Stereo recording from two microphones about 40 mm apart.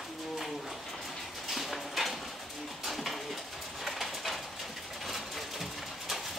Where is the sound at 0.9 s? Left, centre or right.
Centre.